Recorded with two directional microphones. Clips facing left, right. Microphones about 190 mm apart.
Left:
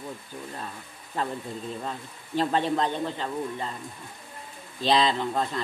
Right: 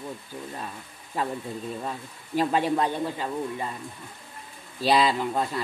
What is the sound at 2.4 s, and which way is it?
Speech, 10° right (ahead or behind).